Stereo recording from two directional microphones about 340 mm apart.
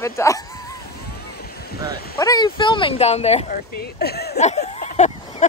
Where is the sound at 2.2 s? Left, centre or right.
Centre.